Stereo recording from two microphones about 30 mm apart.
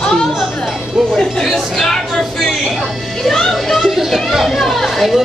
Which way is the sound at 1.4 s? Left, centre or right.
Centre.